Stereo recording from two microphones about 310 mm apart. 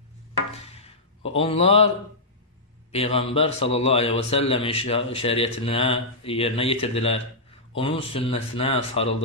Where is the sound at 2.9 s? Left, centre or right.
Centre.